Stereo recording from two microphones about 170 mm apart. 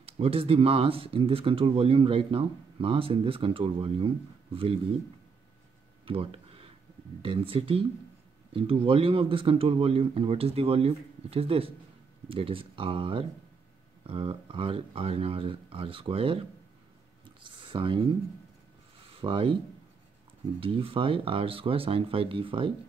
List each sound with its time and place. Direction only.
0.0 s speech: 35° right (ahead or behind)
6.0 s a sound: 35° right (ahead or behind)
7.2 s speech: 30° right (ahead or behind)
17.5 s speech: 30° right (ahead or behind)
19.1 s speech: 30° right (ahead or behind)
20.6 s speech: 30° right (ahead or behind)